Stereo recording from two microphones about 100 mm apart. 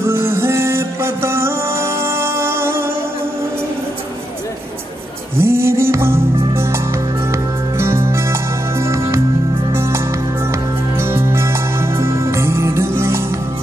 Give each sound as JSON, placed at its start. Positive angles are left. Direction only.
{"t": 0.0, "sound": "music", "side_deg": -25}
{"t": 5.4, "sound": "music", "side_deg": -25}
{"t": 11.0, "sound": "music", "side_deg": -25}